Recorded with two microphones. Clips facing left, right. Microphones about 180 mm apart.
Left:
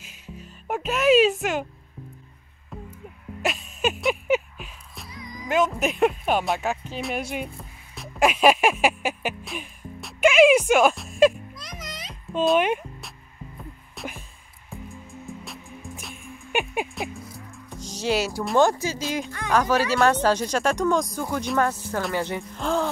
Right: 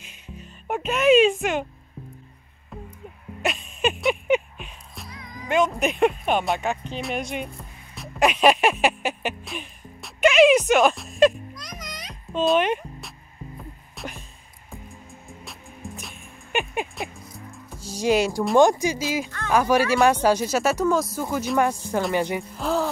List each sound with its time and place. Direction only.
0.0 s music: 5° left (ahead or behind)
2.7 s music: centre (ahead or behind)
7.9 s a sound: 5° left (ahead or behind)
12.1 s music: 5° left (ahead or behind)
15.4 s music: centre (ahead or behind)
16.5 s speech: 10° left (ahead or behind)
17.0 s speech: centre (ahead or behind)
17.6 s music: 10° right (ahead or behind)
18.6 s speech: 15° right (ahead or behind)
19.0 s a woman's voice: 5° right (ahead or behind)